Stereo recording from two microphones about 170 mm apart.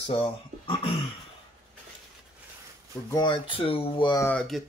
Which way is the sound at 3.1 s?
25° left (ahead or behind).